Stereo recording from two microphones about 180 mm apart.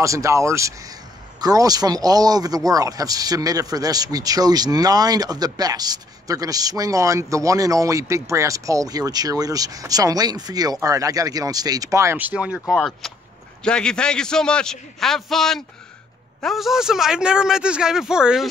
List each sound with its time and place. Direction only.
0.0 s a man's voice: 15° right (ahead or behind)